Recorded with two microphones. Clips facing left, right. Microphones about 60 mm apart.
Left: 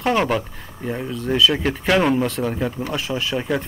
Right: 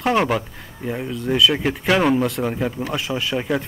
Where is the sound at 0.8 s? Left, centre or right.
Centre.